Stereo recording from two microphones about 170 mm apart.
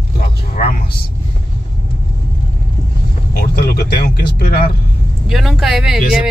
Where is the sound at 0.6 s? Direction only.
50° left (ahead or behind).